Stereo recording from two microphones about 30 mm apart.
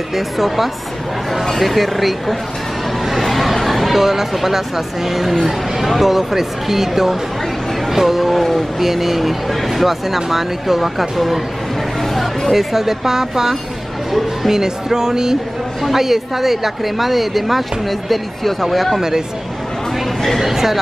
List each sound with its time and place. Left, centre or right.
0.1 s a woman's voice: centre
8.8 s a woman's voice: centre
12.0 s chatter: centre
12.5 s speech: centre
15.8 s a woman's voice: centre
18.9 s speech: centre
20.3 s speech: centre